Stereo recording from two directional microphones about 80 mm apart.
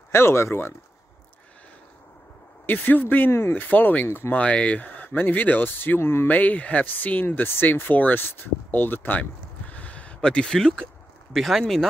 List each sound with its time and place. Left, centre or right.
0.1 s speech: left
2.6 s speech: left
3.6 s speech: left
4.4 s speech: centre